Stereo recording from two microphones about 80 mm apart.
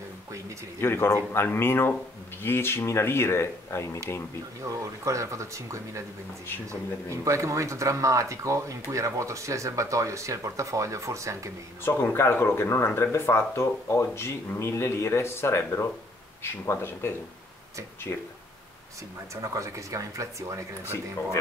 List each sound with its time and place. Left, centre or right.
0.7 s speech: left
4.6 s speech: right
7.2 s speech: right
11.8 s speech: left
19.4 s speech: right
20.8 s speech: left